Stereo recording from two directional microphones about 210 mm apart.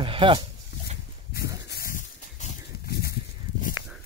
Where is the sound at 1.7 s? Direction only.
45° left (ahead or behind).